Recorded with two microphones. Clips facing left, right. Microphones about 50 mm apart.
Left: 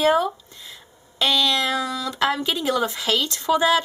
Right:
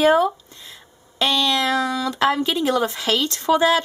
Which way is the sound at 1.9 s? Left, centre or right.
Right.